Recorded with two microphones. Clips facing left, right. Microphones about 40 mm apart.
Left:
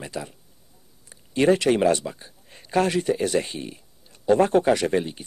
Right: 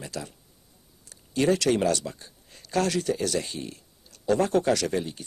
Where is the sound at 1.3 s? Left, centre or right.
Left.